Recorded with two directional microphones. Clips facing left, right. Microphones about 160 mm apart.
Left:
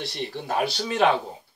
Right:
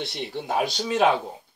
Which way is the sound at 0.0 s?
20° right (ahead or behind).